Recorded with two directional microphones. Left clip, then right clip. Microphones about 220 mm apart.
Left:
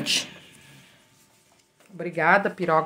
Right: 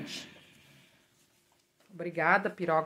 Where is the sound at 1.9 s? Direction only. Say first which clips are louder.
Left 7 dB; 15° right (ahead or behind).